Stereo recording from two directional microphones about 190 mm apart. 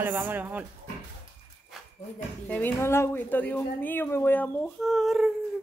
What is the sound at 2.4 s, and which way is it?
A woman's voice, 10° left (ahead or behind).